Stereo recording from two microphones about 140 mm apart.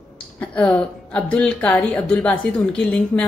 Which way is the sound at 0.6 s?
10° left (ahead or behind).